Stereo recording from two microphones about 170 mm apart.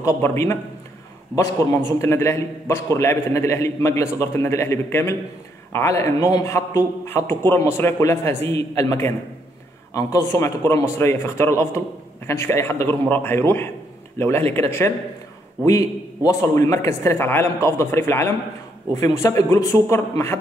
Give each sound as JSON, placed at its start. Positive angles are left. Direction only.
{"t": 0.0, "sound": "a man's voice", "side_deg": 15}
{"t": 16.3, "sound": "a man's voice", "side_deg": 15}